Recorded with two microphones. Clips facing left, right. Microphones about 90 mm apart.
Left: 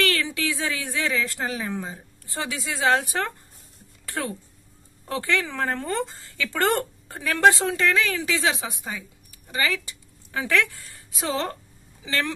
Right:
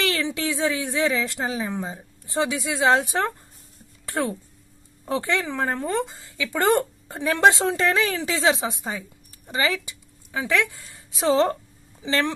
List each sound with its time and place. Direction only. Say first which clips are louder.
0.0 s a woman's voice: even; 20° right (ahead or behind)
11.1 s a woman's voice: right 8 dB; 30° right (ahead or behind)